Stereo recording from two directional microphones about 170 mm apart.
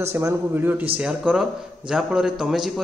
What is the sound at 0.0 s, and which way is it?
A man's voice, 15° right (ahead or behind).